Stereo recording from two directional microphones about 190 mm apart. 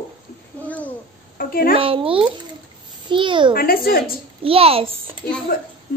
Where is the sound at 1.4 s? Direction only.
50° left (ahead or behind).